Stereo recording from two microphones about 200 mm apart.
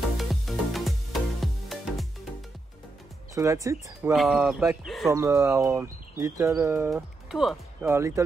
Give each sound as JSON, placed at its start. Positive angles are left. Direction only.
{"t": 0.2, "sound": "music", "side_deg": 0}
{"t": 3.3, "sound": "speech", "side_deg": -15}
{"t": 4.1, "sound": "speech", "side_deg": 0}
{"t": 5.1, "sound": "speech", "side_deg": -15}
{"t": 6.9, "sound": "speech", "side_deg": 0}
{"t": 7.9, "sound": "speech", "side_deg": -15}